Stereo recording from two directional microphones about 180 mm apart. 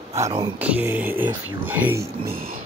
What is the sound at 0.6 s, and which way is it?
Speech, 10° right (ahead or behind).